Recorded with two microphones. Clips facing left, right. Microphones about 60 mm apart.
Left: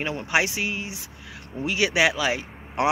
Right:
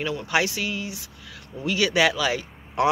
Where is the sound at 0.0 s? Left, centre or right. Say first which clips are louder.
Right 1 dB; left.